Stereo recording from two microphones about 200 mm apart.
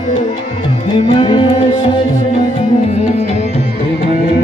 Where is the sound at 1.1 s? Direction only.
25° left (ahead or behind).